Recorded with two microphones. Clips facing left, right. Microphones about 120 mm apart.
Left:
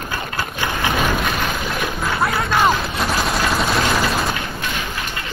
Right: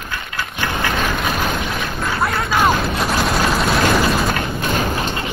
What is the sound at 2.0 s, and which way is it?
Gunshot, centre (ahead or behind).